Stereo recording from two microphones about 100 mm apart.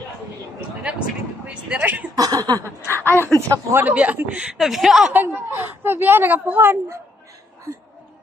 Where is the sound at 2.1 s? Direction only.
40° right (ahead or behind).